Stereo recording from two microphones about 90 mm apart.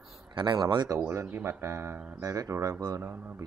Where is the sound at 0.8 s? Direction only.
30° right (ahead or behind).